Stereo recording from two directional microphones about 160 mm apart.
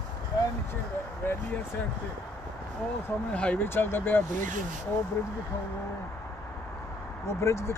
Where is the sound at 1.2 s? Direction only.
10° left (ahead or behind).